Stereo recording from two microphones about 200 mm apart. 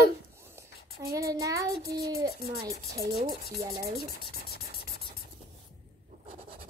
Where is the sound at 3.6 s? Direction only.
15° right (ahead or behind).